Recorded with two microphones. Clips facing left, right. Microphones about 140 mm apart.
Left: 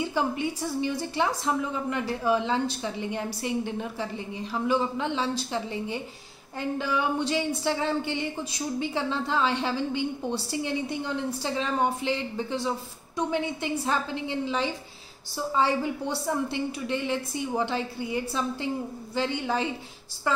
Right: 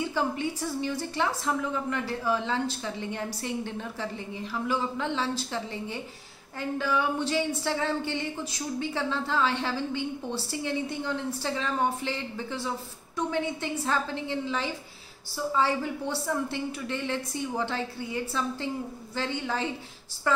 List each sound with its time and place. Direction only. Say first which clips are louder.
0.1 s a woman's voice: left 1 dB; 15° left (ahead or behind)